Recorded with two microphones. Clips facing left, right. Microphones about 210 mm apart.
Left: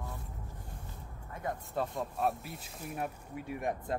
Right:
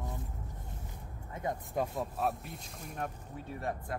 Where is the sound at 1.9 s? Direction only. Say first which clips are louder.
Left 1 dB; centre (ahead or behind); by 4.0 s 15° left (ahead or behind).